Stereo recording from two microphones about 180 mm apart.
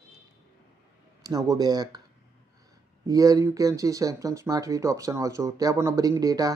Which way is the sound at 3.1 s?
20° right (ahead or behind).